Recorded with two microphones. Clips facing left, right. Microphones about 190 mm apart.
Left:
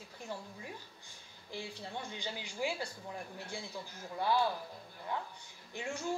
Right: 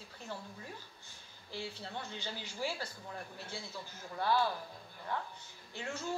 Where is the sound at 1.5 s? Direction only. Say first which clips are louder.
Even; 15° left (ahead or behind).